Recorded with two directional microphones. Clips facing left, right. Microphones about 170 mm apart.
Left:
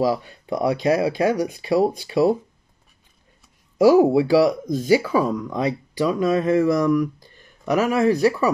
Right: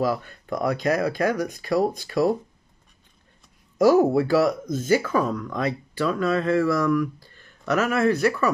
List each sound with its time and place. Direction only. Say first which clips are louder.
0.0 s speech: left 3 dB; 15° left (ahead or behind)
3.7 s speech: left 3 dB; 10° left (ahead or behind)